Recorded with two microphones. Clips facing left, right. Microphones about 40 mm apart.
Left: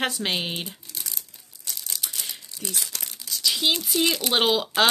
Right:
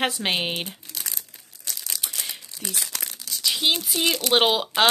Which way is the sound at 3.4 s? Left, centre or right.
Centre.